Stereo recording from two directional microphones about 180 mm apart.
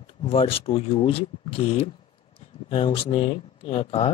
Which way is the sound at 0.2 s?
30° left (ahead or behind).